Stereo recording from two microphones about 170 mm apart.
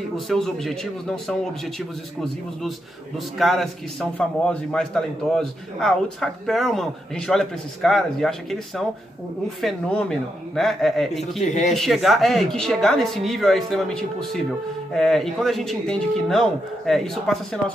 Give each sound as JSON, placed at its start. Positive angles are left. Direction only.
{"t": 0.3, "sound": "a man's voice", "side_deg": 0}
{"t": 3.3, "sound": "a man's voice", "side_deg": 0}
{"t": 11.1, "sound": "a man's voice", "side_deg": 40}
{"t": 11.7, "sound": "a man's voice", "side_deg": 0}